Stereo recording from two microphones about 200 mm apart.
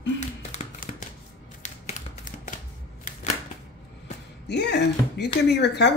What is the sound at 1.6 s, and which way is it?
Tap, 40° left (ahead or behind).